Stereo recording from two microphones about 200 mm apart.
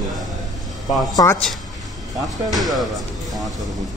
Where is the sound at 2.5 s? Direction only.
Centre (ahead or behind).